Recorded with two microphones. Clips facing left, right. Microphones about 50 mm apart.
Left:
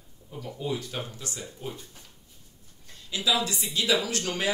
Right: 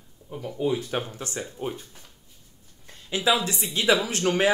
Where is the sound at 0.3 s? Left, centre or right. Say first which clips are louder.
Right 6 dB; right.